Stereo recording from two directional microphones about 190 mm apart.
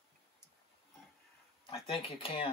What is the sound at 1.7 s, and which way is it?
Cutlery, 30° left (ahead or behind).